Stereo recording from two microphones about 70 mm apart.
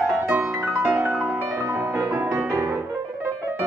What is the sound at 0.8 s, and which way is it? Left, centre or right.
Music, right.